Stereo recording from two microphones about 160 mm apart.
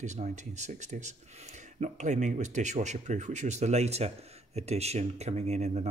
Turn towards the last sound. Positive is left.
turn(degrees=-45)  # may be behind; listen again after turning